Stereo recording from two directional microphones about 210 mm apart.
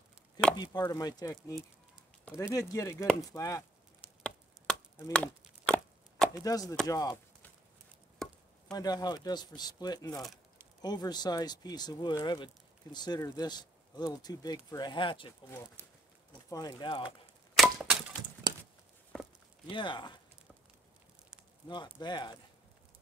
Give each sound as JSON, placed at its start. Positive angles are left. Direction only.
{"t": 0.6, "sound": "chopping", "side_deg": 20}
{"t": 4.0, "sound": "chop", "side_deg": 5}
{"t": 5.1, "sound": "chopping", "side_deg": 5}
{"t": 6.4, "sound": "chopping", "side_deg": 15}
{"t": 6.9, "sound": "chop", "side_deg": 15}
{"t": 8.2, "sound": "chop", "side_deg": 0}
{"t": 8.7, "sound": "speech", "side_deg": 20}
{"t": 16.4, "sound": "speech", "side_deg": 15}
{"t": 17.6, "sound": "crack", "side_deg": 0}
{"t": 18.4, "sound": "a sound", "side_deg": -20}
{"t": 19.7, "sound": "speech", "side_deg": 20}
{"t": 21.6, "sound": "speech", "side_deg": 20}